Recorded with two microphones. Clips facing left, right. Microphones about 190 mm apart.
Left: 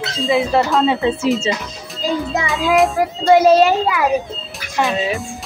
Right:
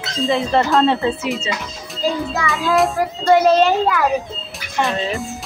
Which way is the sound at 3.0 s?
10° left (ahead or behind).